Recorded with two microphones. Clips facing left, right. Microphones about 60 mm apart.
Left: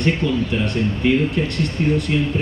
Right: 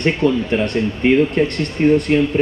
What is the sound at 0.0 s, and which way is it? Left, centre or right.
A man's voice, right.